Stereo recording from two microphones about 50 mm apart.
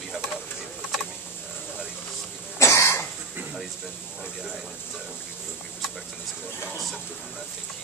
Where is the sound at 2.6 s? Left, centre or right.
Left.